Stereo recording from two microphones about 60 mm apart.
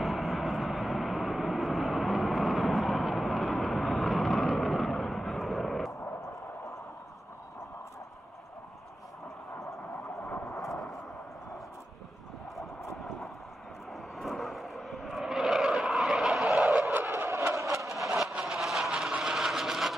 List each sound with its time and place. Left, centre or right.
0.0 s vehicle: centre
10.0 s vehicle: left
10.6 s vehicle: centre
12.9 s thunder: centre
14.1 s vehicle: centre
16.6 s skidding: centre
17.3 s a sound: right
17.9 s train: centre
18.4 s vehicle: centre
18.9 s a sound: centre